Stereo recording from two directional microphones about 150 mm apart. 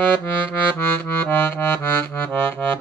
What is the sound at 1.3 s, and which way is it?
Music, 10° left (ahead or behind).